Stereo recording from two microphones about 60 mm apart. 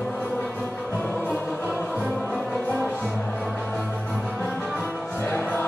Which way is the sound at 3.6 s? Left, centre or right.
Centre.